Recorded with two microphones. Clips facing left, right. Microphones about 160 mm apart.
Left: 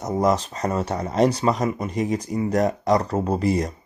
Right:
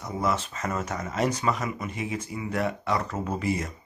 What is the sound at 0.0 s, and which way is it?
Speech, 40° left (ahead or behind).